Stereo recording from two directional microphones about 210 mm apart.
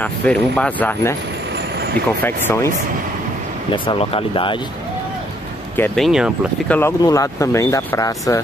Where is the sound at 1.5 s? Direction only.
50° right (ahead or behind).